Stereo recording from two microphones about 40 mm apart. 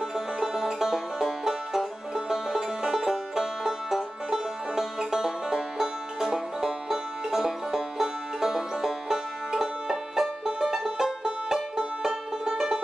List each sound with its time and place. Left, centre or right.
0.1 s music: centre